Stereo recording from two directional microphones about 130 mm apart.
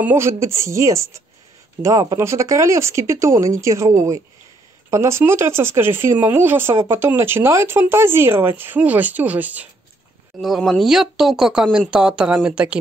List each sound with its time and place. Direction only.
0.0 s speech: 20° right (ahead or behind)
10.4 s speech: centre (ahead or behind)